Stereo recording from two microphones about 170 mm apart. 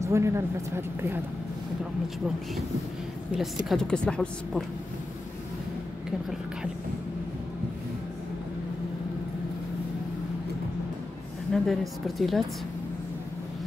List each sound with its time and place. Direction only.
0.0 s speech: 15° right (ahead or behind)
3.3 s a woman's voice: centre (ahead or behind)
11.5 s a woman's voice: centre (ahead or behind)